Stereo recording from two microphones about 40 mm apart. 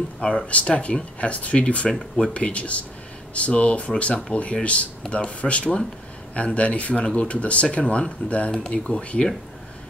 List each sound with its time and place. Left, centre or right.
0.2 s speech: left
8.5 s speech: left